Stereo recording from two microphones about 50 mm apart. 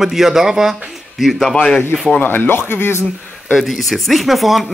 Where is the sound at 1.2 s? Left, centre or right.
Centre.